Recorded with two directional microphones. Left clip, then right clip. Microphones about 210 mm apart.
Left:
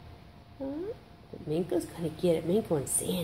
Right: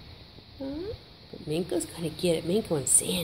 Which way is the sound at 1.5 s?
Centre (ahead or behind).